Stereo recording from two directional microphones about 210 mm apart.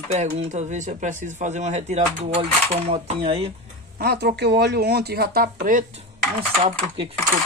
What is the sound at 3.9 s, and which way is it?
Speech, 50° right (ahead or behind).